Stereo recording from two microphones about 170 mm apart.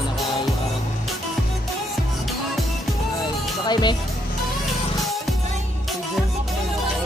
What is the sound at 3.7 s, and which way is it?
Speech, 25° left (ahead or behind).